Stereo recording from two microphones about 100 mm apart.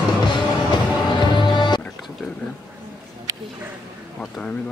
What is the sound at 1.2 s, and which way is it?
Music, 50° left (ahead or behind).